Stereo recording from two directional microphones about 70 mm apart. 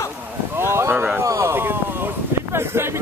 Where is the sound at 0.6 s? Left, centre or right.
Right.